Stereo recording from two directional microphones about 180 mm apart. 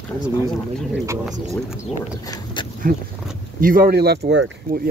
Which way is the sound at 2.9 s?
50° right (ahead or behind).